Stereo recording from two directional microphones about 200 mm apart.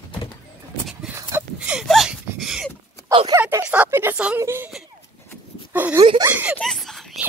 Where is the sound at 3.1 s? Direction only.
25° right (ahead or behind).